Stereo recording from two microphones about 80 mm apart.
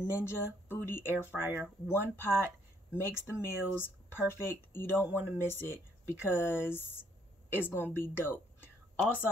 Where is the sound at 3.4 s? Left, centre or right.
Left.